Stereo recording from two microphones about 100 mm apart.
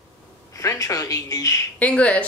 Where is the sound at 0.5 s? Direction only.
35° left (ahead or behind).